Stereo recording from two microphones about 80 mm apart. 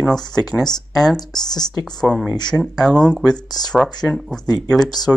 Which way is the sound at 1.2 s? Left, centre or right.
Left.